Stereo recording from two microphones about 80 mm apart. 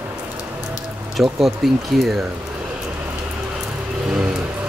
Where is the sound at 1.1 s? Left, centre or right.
Centre.